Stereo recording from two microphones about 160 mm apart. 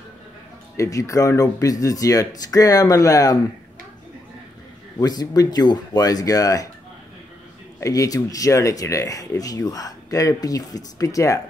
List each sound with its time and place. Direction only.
0.7 s speech: 20° left (ahead or behind)
4.9 s speech: 25° left (ahead or behind)
7.8 s speech: 20° left (ahead or behind)